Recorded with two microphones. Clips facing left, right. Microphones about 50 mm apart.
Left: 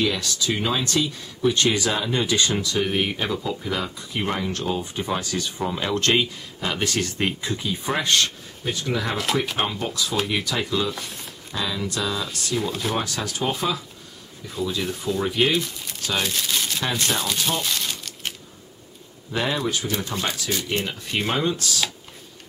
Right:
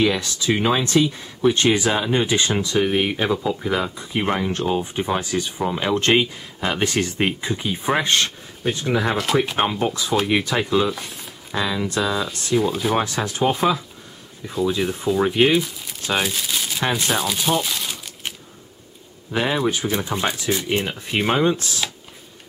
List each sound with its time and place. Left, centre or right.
0.0 s speech: right
9.1 s speech: centre
9.6 s speech: centre
10.9 s speech: centre
11.5 s speech: right
12.5 s speech: centre
12.9 s speech: right
15.6 s crumpling: centre
16.9 s speech: centre
19.3 s speech: centre